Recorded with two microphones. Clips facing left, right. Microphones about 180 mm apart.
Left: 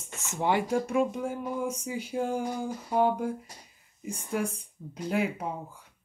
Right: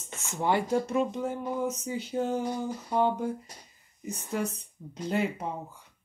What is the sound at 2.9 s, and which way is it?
Speech, 5° left (ahead or behind).